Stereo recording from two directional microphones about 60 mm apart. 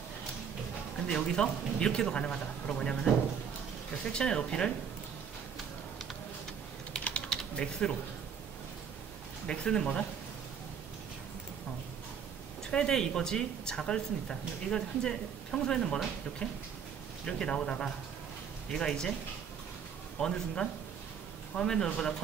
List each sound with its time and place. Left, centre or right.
1.0 s speech: centre
7.2 s typing: centre
9.5 s speech: centre
12.7 s speech: centre
17.3 s speech: centre
20.2 s speech: centre